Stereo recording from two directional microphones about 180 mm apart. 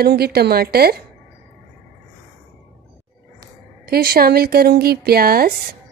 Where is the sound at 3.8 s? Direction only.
60° right (ahead or behind).